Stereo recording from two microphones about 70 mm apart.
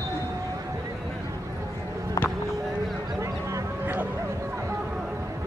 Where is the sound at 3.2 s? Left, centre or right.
Right.